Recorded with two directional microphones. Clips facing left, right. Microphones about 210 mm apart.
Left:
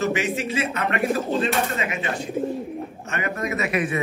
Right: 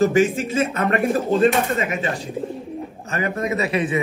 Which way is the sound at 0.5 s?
50° right (ahead or behind).